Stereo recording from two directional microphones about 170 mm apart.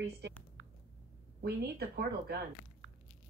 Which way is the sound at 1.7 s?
65° right (ahead or behind).